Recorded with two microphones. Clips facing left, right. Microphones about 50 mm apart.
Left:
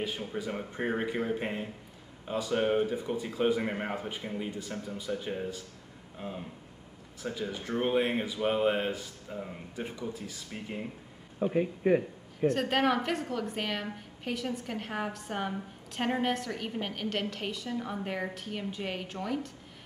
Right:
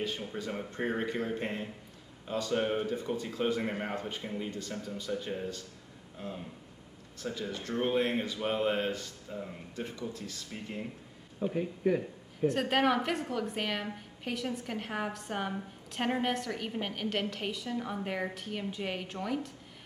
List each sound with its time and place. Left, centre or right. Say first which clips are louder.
0.0 s speech: left 1 dB; centre
11.5 s speech: left 4 dB; left
12.4 s a woman's voice: left 1 dB; centre